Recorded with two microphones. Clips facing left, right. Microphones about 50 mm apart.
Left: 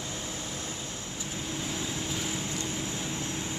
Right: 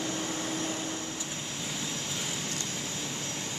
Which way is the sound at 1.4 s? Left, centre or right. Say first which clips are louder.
Left 3 dB; centre.